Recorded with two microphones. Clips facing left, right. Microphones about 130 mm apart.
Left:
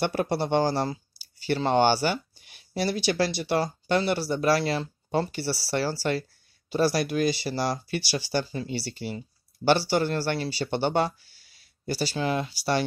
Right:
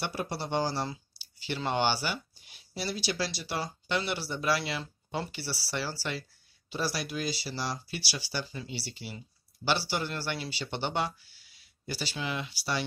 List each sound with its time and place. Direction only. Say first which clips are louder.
0.0 s speech: left 9 dB; 55° left (ahead or behind)